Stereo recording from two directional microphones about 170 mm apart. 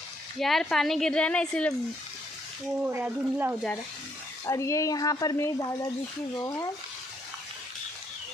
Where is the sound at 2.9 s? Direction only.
15° right (ahead or behind).